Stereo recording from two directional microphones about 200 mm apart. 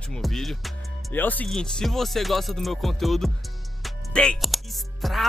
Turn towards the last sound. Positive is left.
turn(degrees=0)  # may be behind; listen again after turning